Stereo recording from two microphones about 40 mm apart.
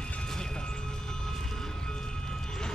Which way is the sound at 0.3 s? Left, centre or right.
Centre.